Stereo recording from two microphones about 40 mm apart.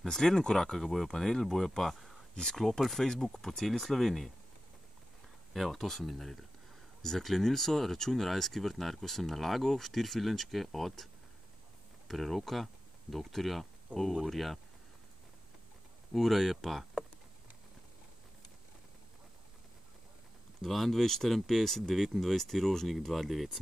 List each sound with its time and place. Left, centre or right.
0.0 s speech: centre
0.7 s speech: centre
1.1 s speech: centre
2.3 s speech: centre
5.5 s speech: centre
12.1 s speech: centre
13.9 s speech: right
14.2 s speech: centre
16.1 s speech: centre
20.6 s speech: centre
23.3 s speech: centre